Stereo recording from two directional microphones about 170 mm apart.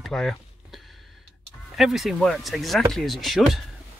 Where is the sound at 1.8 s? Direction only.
Centre (ahead or behind).